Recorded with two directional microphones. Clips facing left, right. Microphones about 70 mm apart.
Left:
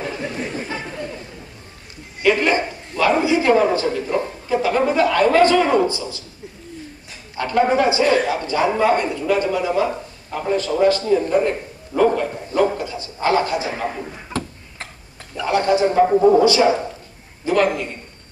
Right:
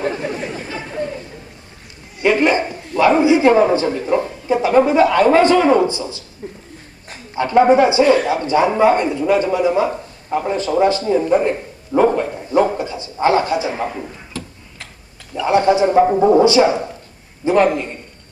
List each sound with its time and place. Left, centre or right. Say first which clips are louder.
2.2 s dog: right 2 dB; right
3.0 s a man's voice: right 5 dB; right
7.3 s speech: right 6 dB; right
11.9 s bow-wow: right 2 dB; right
14.3 s tick-tock: left 6 dB; left
15.4 s speech: right 3 dB; right